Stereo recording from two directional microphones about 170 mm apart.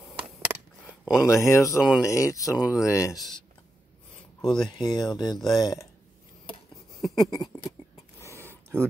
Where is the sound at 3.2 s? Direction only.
Centre (ahead or behind).